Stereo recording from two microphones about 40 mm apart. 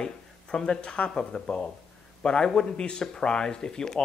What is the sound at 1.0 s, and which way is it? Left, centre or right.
Speech, centre.